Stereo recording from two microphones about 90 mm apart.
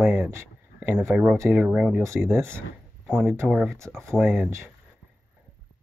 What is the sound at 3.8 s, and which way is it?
Speech, 35° right (ahead or behind).